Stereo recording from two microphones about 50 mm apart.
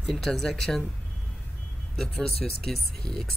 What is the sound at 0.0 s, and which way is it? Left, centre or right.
Speech, centre.